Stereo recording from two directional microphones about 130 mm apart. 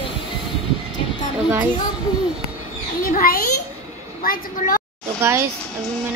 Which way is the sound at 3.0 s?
90° left.